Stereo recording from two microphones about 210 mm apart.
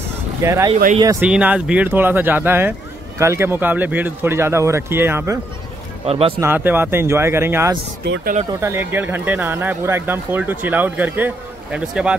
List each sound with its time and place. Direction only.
0.4 s speech: 15° right (ahead or behind)
6.0 s speech: 30° right (ahead or behind)
6.4 s speech: 10° right (ahead or behind)